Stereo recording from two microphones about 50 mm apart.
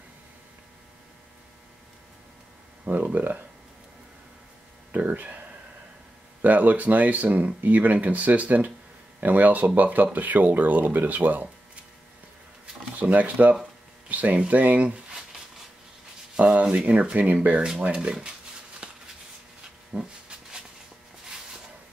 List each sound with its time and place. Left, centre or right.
2.8 s speech: right
4.9 s speech: right
6.4 s speech: right
13.0 s speech: right
16.3 s speech: right
18.8 s a sound: right